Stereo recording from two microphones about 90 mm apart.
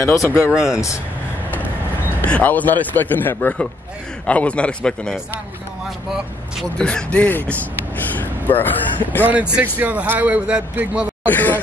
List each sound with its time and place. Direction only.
0.0 s speech: 35° left (ahead or behind)
0.5 s a man's voice: 5° right (ahead or behind)
2.2 s a man's voice: 15° left (ahead or behind)
6.8 s a man's voice: 10° left (ahead or behind)
8.2 s a sound: 20° left (ahead or behind)
9.2 s a man's voice: 15° right (ahead or behind)
11.2 s a sound: 20° left (ahead or behind)